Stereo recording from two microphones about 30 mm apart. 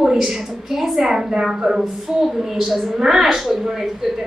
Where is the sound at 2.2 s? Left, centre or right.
Centre.